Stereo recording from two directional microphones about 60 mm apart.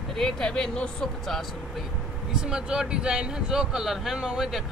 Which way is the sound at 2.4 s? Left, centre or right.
Centre.